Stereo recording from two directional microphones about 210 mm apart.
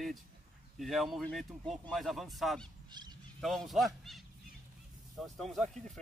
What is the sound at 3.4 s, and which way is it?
Speech, centre (ahead or behind).